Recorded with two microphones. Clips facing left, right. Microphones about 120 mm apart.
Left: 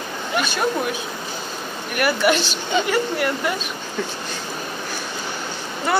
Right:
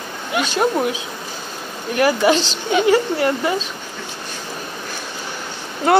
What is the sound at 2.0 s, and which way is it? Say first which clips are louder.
Speech: right 4 dB; 25° right (ahead or behind).